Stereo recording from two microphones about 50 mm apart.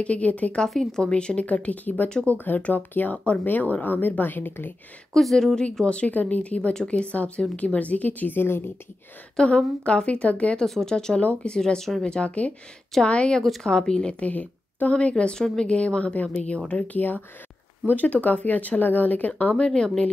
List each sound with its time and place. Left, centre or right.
0.0 s a woman's voice: left
0.7 s a woman's voice: centre; by 4.7 s left
5.1 s speech: centre
5.9 s a woman's voice: left
8.4 s a woman's voice: left
9.8 s a woman's voice: left
10.6 s speech: centre
11.1 s a woman's voice: left
11.5 s a woman's voice: centre
14.2 s a woman's voice: left
19.5 s speech: centre